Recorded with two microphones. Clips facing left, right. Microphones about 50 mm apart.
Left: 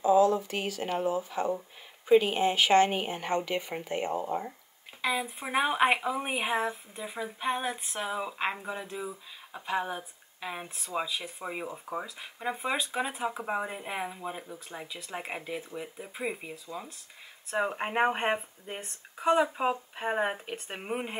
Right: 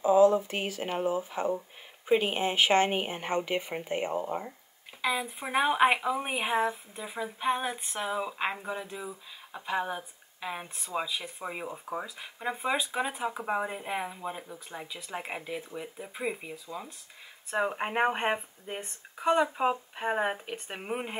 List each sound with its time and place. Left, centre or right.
0.0 s speech: right
5.0 s speech: centre